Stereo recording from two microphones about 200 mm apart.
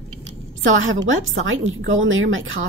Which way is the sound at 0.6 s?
80° right.